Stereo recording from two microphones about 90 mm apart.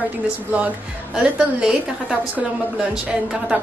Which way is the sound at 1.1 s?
10° right (ahead or behind).